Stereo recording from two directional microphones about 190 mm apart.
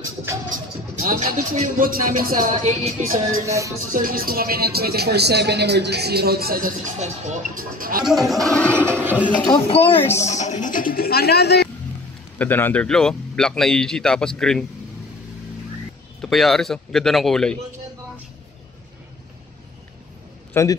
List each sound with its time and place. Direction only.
1.0 s speech: 40° right (ahead or behind)
3.4 s speech: 15° right (ahead or behind)
3.9 s speech: 50° right (ahead or behind)
8.0 s speech: centre (ahead or behind)
8.9 s speech: 10° right (ahead or behind)
9.5 s speech: 30° left (ahead or behind); by 11.7 s 60° left (ahead or behind)
12.4 s speech: 10° left (ahead or behind)
16.2 s speech: centre (ahead or behind)
20.5 s a man's voice: 15° left (ahead or behind)